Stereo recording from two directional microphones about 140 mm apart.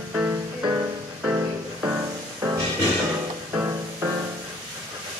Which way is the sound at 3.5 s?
15° right (ahead or behind).